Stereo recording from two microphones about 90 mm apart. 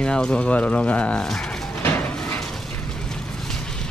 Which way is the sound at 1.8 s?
20° left (ahead or behind).